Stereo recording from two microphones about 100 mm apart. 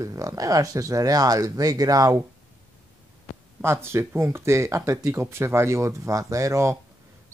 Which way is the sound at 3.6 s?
25° right (ahead or behind).